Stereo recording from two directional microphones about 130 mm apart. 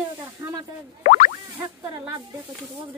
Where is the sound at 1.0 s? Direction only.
90° left.